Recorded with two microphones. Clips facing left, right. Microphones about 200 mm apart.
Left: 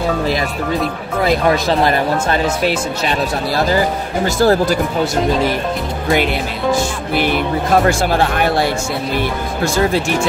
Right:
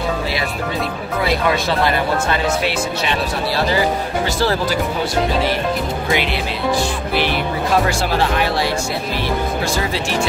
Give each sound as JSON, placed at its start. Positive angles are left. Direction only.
{"t": 1.2, "sound": "speech", "side_deg": 45}
{"t": 7.2, "sound": "speech", "side_deg": 50}